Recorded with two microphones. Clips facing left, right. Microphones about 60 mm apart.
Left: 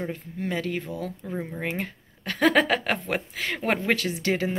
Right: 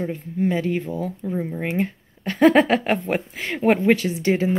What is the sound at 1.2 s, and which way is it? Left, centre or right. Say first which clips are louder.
Speech: right 6 dB; centre.